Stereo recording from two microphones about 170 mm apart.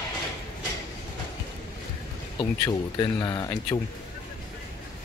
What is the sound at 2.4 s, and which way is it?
Speech, 25° left (ahead or behind).